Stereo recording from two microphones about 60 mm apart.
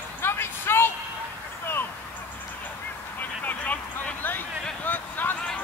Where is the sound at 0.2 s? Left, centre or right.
Left.